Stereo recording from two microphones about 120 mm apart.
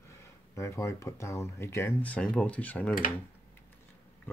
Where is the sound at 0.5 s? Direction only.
25° left (ahead or behind).